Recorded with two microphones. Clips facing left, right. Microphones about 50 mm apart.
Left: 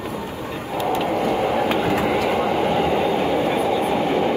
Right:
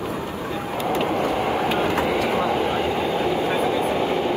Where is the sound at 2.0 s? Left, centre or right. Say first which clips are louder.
Left 1 dB; left.